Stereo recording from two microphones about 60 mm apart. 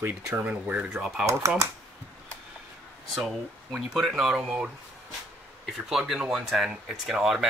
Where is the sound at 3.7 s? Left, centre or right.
Centre.